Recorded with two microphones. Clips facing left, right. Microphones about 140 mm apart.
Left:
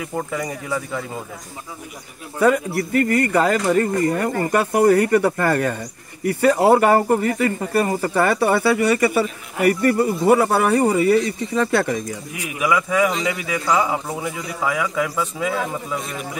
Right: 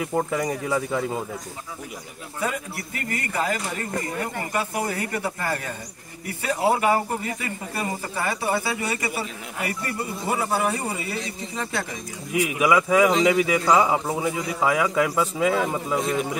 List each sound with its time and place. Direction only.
0.4 s a man's voice: 20° right (ahead or behind)
2.4 s a man's voice: 60° left (ahead or behind)
12.4 s a man's voice: 20° right (ahead or behind)